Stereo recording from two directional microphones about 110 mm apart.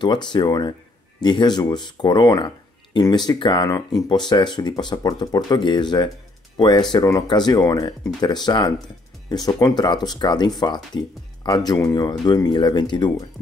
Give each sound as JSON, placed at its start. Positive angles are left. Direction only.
{"t": 0.0, "sound": "speech", "side_deg": 45}